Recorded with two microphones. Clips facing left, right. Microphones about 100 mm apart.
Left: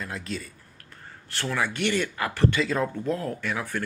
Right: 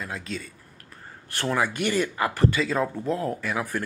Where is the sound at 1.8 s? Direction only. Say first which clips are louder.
Right 1 dB; 10° right (ahead or behind).